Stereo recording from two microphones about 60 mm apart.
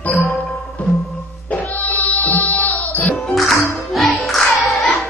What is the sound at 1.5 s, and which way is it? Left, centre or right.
Music, left.